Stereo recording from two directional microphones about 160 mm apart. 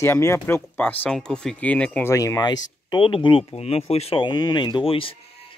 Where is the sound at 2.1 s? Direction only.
20° left (ahead or behind).